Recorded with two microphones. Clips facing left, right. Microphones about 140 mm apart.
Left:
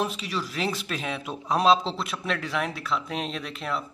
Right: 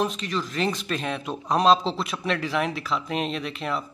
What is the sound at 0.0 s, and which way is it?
A man's voice, 5° left (ahead or behind).